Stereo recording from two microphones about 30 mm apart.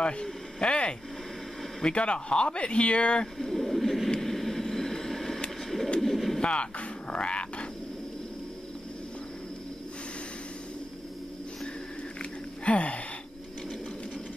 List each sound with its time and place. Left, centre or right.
0.2 s speech: left
3.3 s speech: centre
4.2 s vehicle: centre
5.9 s bird: centre
6.4 s speech: left
12.2 s a sound: left